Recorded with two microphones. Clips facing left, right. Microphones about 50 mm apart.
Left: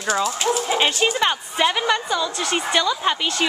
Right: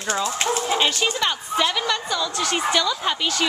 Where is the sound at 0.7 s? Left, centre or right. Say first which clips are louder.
Left 2 dB; centre.